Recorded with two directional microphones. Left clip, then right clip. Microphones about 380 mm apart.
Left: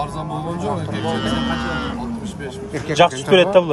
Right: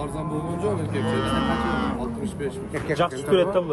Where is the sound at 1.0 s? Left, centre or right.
Centre.